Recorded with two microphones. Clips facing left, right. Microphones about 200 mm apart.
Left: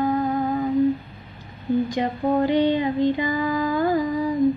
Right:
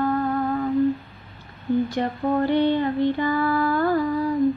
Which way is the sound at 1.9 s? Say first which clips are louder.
Left 1 dB; 15° left (ahead or behind).